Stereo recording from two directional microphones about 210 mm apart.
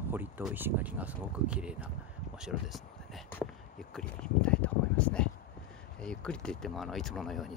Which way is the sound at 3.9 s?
5° left (ahead or behind).